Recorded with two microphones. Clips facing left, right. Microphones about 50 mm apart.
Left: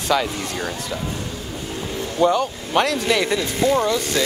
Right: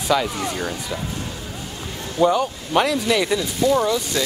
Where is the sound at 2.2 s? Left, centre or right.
Centre.